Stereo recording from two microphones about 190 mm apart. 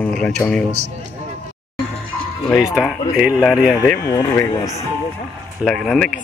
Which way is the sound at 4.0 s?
20° left (ahead or behind).